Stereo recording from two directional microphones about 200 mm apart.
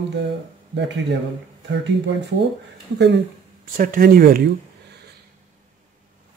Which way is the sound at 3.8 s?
45° right (ahead or behind).